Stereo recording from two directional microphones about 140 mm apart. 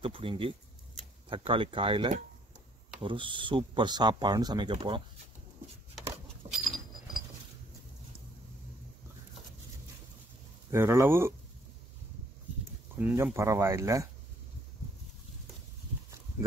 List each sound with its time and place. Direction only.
0.0 s speech: 40° right (ahead or behind)
6.4 s a sound: 45° right (ahead or behind)
10.7 s speech: 20° right (ahead or behind)
12.9 s speech: 15° right (ahead or behind)